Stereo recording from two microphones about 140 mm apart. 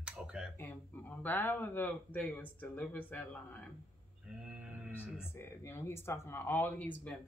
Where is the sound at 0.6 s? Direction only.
15° left (ahead or behind).